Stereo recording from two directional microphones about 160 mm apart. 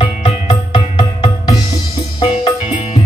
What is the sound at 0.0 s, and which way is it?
Music, 30° left (ahead or behind).